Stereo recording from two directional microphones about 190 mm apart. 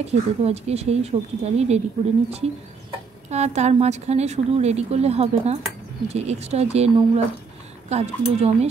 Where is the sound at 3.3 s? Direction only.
35° right (ahead or behind).